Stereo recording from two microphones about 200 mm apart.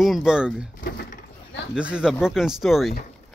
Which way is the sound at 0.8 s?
50° left (ahead or behind).